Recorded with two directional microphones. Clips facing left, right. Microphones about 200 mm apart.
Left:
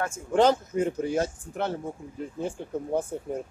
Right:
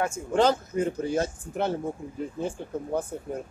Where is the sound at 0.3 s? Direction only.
20° left (ahead or behind).